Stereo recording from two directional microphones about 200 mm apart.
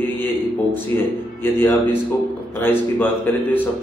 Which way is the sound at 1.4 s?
10° left (ahead or behind).